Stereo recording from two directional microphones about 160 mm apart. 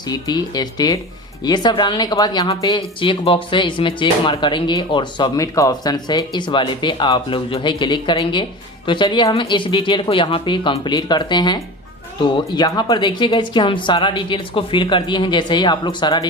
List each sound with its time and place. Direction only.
0.1 s speech: 25° left (ahead or behind)